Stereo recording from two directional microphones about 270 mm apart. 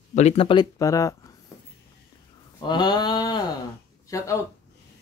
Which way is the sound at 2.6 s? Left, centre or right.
Centre.